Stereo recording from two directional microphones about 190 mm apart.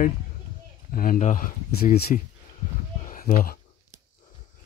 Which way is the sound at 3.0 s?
45° left (ahead or behind).